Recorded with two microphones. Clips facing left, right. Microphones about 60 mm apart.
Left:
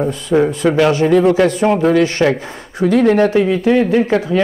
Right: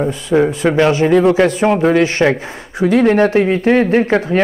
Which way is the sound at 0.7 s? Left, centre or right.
Right.